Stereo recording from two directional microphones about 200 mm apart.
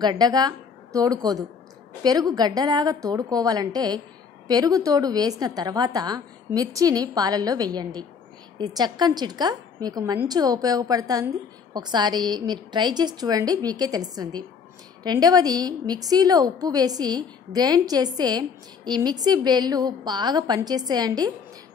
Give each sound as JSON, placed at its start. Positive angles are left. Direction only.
{"t": 0.0, "sound": "a woman's voice", "side_deg": -20}